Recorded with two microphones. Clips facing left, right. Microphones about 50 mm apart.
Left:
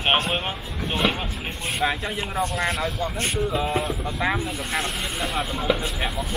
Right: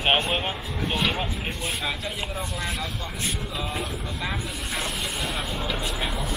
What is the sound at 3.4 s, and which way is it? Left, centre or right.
Speech, left.